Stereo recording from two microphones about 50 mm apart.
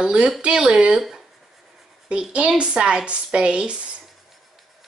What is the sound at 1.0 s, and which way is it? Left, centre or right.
Speech, centre.